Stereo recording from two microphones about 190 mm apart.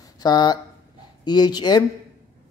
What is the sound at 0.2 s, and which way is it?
Speech, 20° left (ahead or behind).